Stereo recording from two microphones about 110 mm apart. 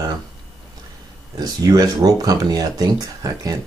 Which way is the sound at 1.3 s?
35° right (ahead or behind).